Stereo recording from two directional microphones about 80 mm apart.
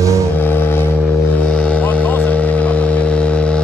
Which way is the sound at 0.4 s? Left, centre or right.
Left.